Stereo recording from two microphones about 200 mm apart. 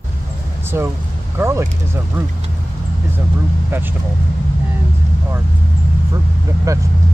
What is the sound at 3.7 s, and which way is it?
Speech, 10° right (ahead or behind).